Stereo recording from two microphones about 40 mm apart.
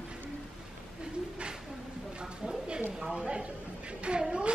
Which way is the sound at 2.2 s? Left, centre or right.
Right.